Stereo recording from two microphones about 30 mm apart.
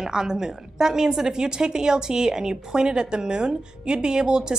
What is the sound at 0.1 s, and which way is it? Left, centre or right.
A woman's voice, right.